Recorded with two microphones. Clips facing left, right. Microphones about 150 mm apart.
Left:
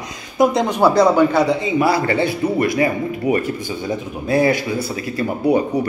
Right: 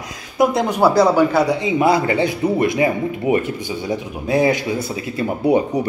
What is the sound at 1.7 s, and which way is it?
Speech, 20° right (ahead or behind).